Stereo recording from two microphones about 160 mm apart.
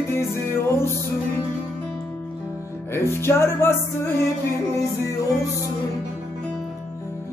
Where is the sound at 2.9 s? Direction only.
15° left (ahead or behind).